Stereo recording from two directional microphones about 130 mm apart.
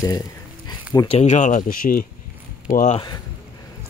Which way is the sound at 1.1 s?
65° left (ahead or behind).